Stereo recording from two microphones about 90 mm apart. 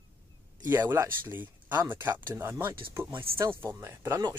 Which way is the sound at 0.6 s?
25° right (ahead or behind).